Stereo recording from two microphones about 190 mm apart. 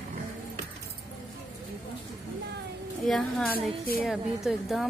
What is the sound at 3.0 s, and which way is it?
A woman's voice, centre (ahead or behind).